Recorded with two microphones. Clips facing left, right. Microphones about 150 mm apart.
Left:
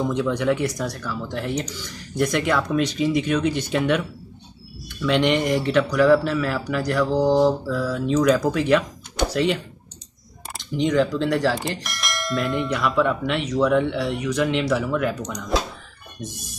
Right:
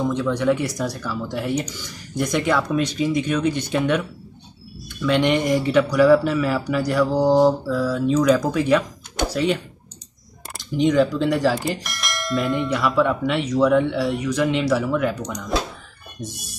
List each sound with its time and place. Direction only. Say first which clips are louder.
0.1 s speech: right 1 dB; 10° left (ahead or behind)
0.5 s speech: right 1 dB; 5° right (ahead or behind)
5.0 s speech: right 1 dB; 5° right (ahead or behind)
10.6 s speech: right 2 dB; centre (ahead or behind)